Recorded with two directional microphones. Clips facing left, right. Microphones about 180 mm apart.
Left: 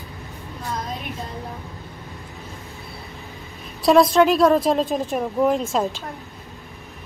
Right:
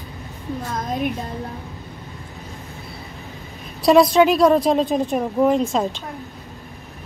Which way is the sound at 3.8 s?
Centre (ahead or behind).